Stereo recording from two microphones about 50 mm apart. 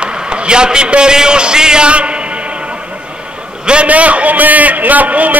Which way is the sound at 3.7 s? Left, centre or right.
Right.